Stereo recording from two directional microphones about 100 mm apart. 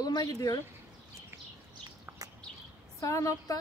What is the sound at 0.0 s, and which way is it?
Speech, 40° left (ahead or behind).